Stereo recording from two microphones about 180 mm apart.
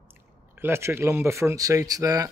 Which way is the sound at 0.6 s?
15° right (ahead or behind).